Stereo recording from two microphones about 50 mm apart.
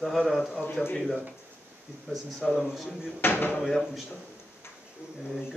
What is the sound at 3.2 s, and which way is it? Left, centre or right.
Speech, left.